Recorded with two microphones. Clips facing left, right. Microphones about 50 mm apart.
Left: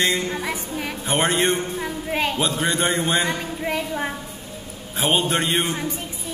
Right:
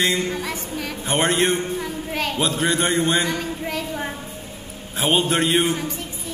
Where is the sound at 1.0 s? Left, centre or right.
Centre.